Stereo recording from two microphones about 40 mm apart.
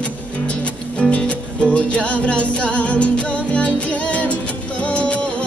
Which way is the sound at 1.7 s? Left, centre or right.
Left.